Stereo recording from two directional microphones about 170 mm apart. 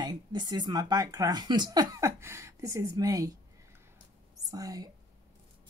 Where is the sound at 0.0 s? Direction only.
25° right (ahead or behind).